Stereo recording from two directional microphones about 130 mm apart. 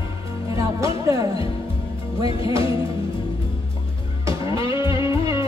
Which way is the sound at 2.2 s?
45° left (ahead or behind).